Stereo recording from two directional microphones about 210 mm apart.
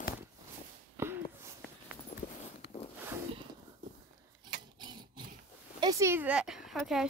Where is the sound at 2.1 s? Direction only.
35° left (ahead or behind).